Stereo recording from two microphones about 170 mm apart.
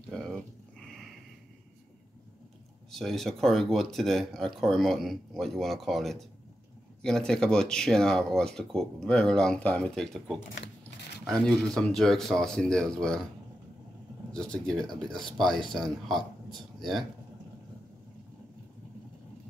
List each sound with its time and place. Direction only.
0.1 s dog: centre (ahead or behind)
2.9 s speech: centre (ahead or behind)
14.3 s speech: 5° left (ahead or behind)